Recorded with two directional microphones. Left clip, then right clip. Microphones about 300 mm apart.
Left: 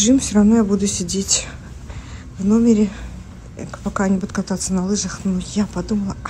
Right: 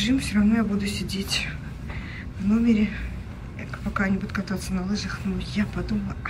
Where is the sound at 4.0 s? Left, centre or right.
Centre.